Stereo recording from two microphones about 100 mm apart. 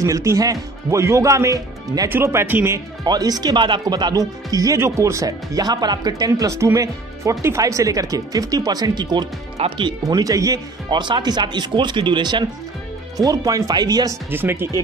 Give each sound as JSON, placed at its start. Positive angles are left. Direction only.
{"t": 0.0, "sound": "speech", "side_deg": -30}
{"t": 3.1, "sound": "speech", "side_deg": -40}
{"t": 4.7, "sound": "speech", "side_deg": -30}
{"t": 9.6, "sound": "speech", "side_deg": -55}
{"t": 10.0, "sound": "speech", "side_deg": -35}
{"t": 10.9, "sound": "speech", "side_deg": -50}
{"t": 13.2, "sound": "speech", "side_deg": -35}
{"t": 14.3, "sound": "speech", "side_deg": -20}